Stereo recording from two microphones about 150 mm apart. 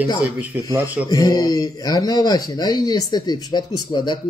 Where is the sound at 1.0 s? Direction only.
25° left (ahead or behind).